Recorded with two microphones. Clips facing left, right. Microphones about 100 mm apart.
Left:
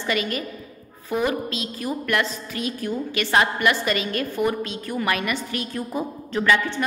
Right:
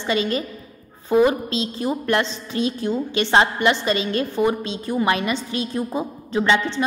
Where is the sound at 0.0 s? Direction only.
25° right (ahead or behind).